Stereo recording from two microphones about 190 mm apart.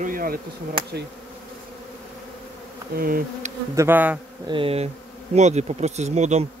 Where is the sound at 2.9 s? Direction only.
50° right (ahead or behind).